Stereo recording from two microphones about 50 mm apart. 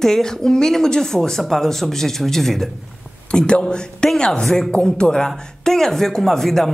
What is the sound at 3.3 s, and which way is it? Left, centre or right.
Speech, left.